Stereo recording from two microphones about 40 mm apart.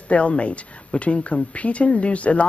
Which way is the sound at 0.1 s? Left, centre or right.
Left.